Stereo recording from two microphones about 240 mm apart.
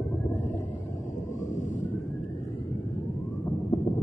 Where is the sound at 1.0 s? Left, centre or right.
Left.